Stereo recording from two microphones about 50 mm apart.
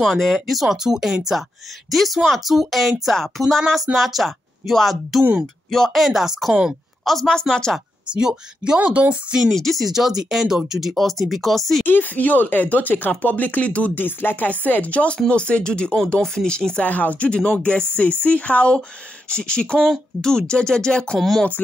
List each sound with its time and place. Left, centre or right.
0.1 s speech: centre
6.0 s speech: centre
7.1 s speech: centre
8.1 s speech: centre
8.7 s speech: right
9.5 s speech: centre
11.8 s speech: left
13.9 s speech: left; by 16.8 s centre
16.8 s speech: left; by 21.2 s centre